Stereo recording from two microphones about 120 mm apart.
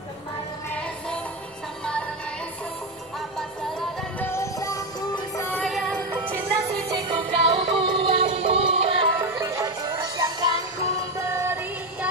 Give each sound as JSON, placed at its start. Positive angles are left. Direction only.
{"t": 4.2, "sound": "music", "side_deg": 20}
{"t": 5.6, "sound": "music", "side_deg": 0}
{"t": 6.9, "sound": "music", "side_deg": -40}
{"t": 7.8, "sound": "music", "side_deg": -50}
{"t": 9.2, "sound": "music", "side_deg": -25}